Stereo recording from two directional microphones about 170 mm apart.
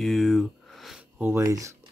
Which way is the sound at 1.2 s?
15° right (ahead or behind).